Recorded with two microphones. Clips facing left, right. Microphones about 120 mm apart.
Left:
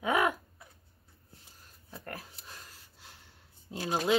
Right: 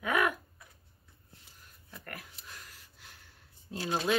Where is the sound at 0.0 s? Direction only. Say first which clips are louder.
Left 2 dB; 25° left (ahead or behind).